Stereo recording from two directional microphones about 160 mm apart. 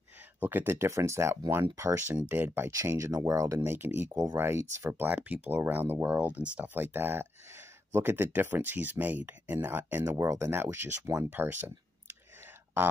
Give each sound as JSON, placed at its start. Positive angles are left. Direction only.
{"t": 0.4, "sound": "speech", "side_deg": -10}